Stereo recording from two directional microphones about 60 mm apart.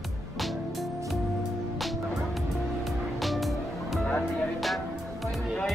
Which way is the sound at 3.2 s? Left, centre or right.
Centre.